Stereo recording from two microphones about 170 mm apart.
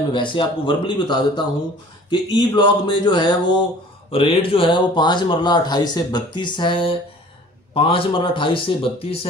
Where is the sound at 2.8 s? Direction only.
25° left (ahead or behind).